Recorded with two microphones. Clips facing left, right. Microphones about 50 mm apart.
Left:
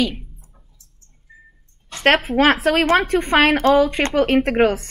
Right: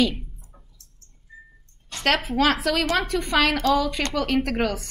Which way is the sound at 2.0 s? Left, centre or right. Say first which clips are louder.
Left 7 dB; left.